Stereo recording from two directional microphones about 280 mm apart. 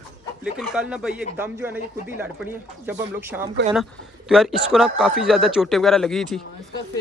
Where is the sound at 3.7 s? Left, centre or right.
Centre.